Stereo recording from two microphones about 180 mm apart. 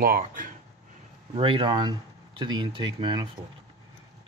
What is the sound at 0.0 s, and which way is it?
Speech, 50° right (ahead or behind).